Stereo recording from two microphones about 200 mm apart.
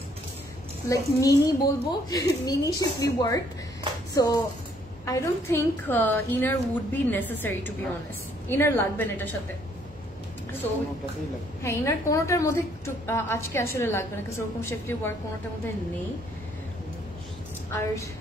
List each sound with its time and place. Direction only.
0.8 s a woman's voice: 15° left (ahead or behind)
11.6 s a woman's voice: 15° left (ahead or behind)
17.6 s a woman's voice: 10° left (ahead or behind)